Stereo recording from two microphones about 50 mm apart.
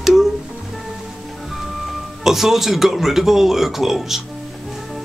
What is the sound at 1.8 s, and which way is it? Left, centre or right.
Speech, centre.